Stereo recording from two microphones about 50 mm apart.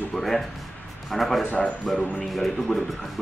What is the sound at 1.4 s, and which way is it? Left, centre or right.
Speech, left.